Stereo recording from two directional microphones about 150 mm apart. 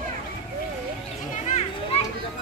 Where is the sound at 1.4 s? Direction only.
50° left (ahead or behind).